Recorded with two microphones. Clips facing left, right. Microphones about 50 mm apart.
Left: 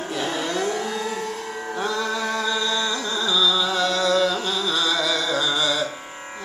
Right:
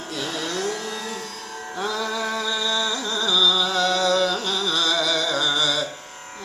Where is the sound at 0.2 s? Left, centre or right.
Centre.